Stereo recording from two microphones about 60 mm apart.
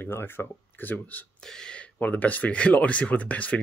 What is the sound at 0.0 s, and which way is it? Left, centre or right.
Speech, left.